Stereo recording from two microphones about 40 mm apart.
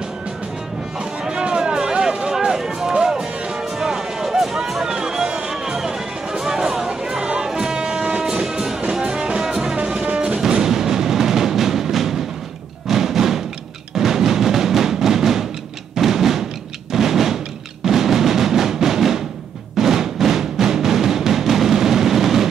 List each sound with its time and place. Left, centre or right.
1.2 s music: centre
10.4 s music: centre
16.0 s percussion: centre
16.9 s a sound: centre
17.8 s music: centre